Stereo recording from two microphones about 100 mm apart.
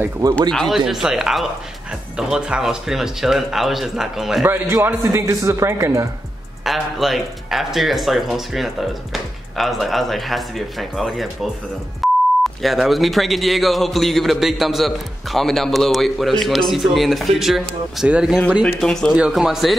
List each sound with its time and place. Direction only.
0.4 s a man's voice: 5° left (ahead or behind)
5.0 s speech: 30° right (ahead or behind)
6.6 s a man's voice: centre (ahead or behind)
12.0 s beep: centre (ahead or behind)
12.6 s a man's voice: centre (ahead or behind)
18.6 s a man's voice: 5° left (ahead or behind)
19.1 s a man's voice: 5° right (ahead or behind)